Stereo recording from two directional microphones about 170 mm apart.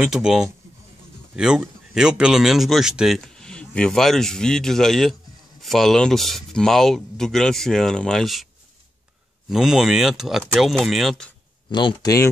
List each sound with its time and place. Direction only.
0.0 s speech: 5° right (ahead or behind)
9.5 s speech: centre (ahead or behind)
11.7 s speech: 25° left (ahead or behind)